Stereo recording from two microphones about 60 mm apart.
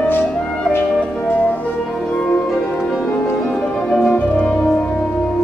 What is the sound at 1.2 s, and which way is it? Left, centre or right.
Music, left.